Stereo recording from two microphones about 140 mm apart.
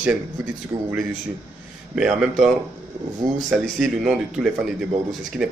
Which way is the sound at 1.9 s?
5° right (ahead or behind).